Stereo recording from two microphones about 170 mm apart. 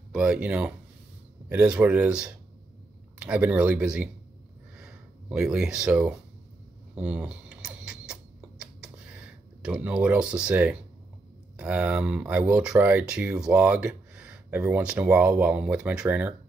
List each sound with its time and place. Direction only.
0.1 s speech: 5° right (ahead or behind)
4.7 s a sound: 5° right (ahead or behind)
11.5 s speech: 5° right (ahead or behind)